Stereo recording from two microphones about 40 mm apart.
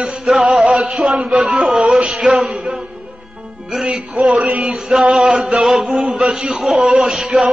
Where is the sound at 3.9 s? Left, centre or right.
Centre.